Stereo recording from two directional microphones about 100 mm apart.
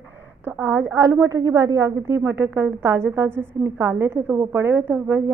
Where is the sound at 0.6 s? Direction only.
20° right (ahead or behind).